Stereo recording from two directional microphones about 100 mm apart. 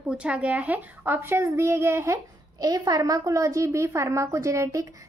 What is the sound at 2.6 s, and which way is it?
A woman's voice, 40° right (ahead or behind).